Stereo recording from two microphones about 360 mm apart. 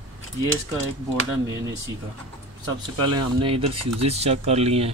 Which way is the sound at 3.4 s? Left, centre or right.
Centre.